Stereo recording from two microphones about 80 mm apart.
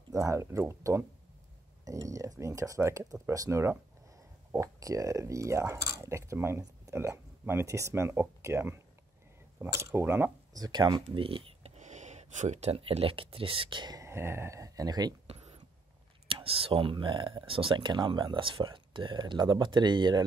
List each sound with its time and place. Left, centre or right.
0.1 s speech: right
10.5 s speech: right
13.6 s speech: right
13.9 s speech: right
16.3 s speech: right